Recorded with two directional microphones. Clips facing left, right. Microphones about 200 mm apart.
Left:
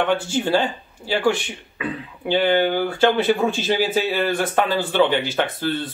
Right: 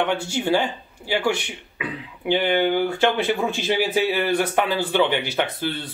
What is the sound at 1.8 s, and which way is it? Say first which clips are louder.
Speech: left 3 dB; 15° right (ahead or behind).